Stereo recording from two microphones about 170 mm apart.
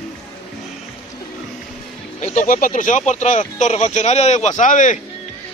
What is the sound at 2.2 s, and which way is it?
Speech, 45° left (ahead or behind).